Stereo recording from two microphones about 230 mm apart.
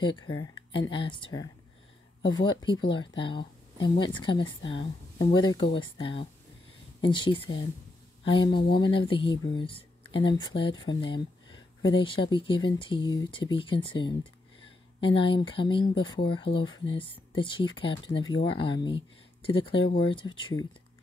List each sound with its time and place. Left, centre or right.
0.4 s speech: centre